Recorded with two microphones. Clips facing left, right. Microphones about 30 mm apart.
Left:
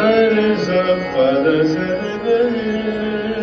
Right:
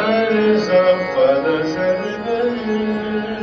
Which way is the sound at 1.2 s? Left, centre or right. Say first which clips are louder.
Left 2 dB; left.